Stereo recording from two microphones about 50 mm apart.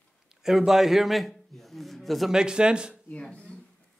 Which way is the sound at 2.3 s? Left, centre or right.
Centre.